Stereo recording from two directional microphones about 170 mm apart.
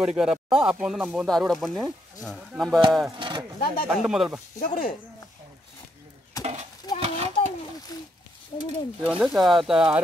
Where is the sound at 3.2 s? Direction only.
25° right (ahead or behind).